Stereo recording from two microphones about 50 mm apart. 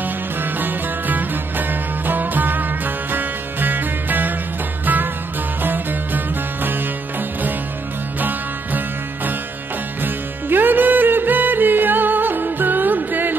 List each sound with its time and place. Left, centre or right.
0.0 s music: right
8.2 s music: right